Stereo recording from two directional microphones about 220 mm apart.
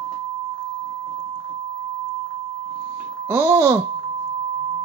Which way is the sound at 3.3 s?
10° right (ahead or behind).